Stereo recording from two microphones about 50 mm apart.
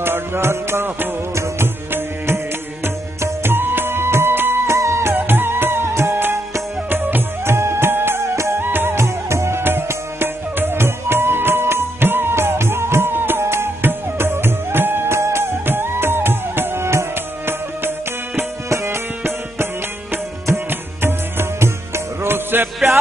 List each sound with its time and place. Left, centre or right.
0.0 s music: right
4.6 s music: right
5.1 s music: right
6.9 s music: right
7.4 s music: right
8.2 s music: right
8.5 s music: right
9.0 s music: right
9.6 s music: right
17.5 s music: right